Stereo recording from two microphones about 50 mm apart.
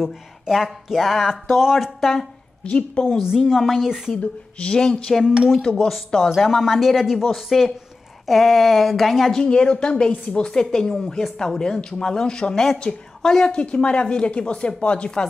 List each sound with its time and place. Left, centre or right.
0.0 s speech: centre
2.6 s a woman's voice: left
3.2 s a woman's voice: centre
4.2 s a woman's voice: left
5.2 s a woman's voice: centre
5.5 s a woman's voice: centre
6.3 s speech: centre
9.3 s a woman's voice: centre